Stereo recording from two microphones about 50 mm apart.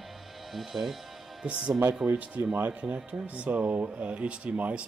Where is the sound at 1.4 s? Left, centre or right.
Centre.